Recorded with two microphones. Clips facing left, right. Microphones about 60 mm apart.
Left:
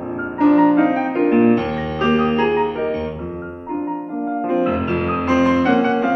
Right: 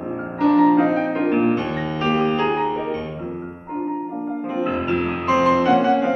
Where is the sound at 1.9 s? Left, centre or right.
Centre.